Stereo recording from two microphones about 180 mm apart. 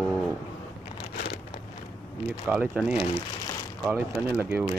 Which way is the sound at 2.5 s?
5° right (ahead or behind).